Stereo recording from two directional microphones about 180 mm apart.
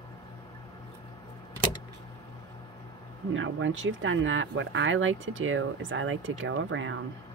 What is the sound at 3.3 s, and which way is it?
Speech, 90° right.